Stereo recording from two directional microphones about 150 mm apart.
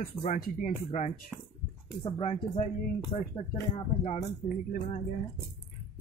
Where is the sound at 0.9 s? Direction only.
50° left (ahead or behind).